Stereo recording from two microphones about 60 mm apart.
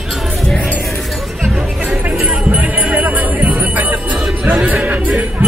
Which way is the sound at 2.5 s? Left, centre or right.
Right.